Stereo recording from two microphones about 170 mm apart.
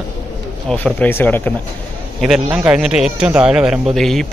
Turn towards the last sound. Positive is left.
turn(degrees=0)  # may be behind; listen again after turning